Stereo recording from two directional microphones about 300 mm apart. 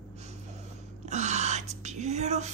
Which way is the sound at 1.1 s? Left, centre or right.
Right.